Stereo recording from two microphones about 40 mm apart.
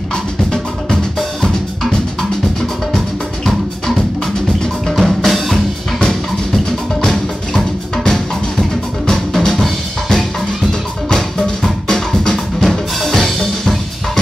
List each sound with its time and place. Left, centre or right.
4.8 s music: centre
9.3 s drum kit: centre
11.1 s music: centre